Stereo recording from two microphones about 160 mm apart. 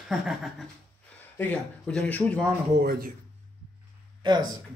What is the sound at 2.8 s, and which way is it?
Speech, 65° right (ahead or behind).